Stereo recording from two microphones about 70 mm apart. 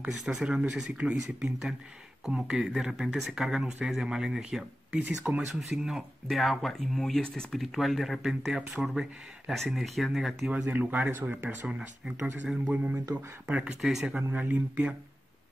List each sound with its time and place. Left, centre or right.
0.2 s speech: centre
5.0 s speech: right
5.5 s speech: centre
10.7 s speech: right
11.6 s speech: centre
14.3 s speech: right